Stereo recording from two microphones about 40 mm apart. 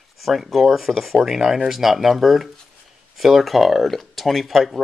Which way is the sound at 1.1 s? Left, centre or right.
Centre.